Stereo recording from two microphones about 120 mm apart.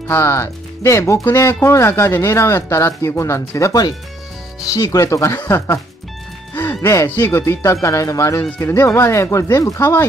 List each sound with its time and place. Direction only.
0.1 s speech: 25° left (ahead or behind)
6.5 s music: 15° left (ahead or behind)
7.1 s speech: 15° left (ahead or behind)